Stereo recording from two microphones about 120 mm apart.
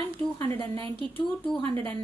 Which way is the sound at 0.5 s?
50° right (ahead or behind).